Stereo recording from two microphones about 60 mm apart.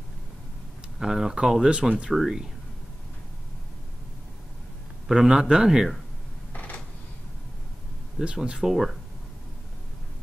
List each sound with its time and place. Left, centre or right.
0.9 s a man's voice: centre
5.0 s a man's voice: centre
6.5 s creak: left
8.2 s a man's voice: centre